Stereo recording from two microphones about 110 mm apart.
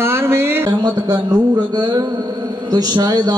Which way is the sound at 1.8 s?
40° right (ahead or behind).